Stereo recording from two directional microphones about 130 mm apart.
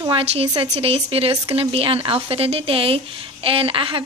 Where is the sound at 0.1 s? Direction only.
45° right (ahead or behind).